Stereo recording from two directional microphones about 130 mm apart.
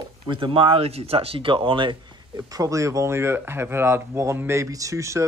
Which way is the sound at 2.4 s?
25° right (ahead or behind).